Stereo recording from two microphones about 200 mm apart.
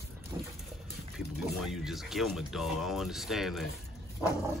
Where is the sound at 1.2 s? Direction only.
Centre (ahead or behind).